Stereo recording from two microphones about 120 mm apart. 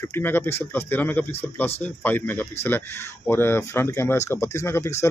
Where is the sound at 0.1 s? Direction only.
15° left (ahead or behind).